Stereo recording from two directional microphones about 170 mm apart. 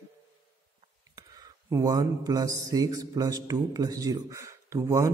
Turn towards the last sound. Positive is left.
turn(degrees=-20)  # may be behind; listen again after turning